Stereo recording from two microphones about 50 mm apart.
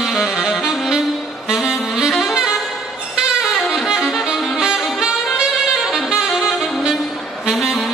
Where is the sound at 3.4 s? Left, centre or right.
Centre.